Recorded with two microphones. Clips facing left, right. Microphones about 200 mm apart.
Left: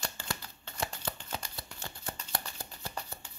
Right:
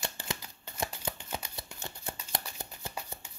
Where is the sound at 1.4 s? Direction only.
20° right (ahead or behind).